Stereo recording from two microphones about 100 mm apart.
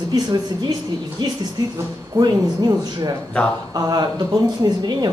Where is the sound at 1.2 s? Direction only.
45° right (ahead or behind).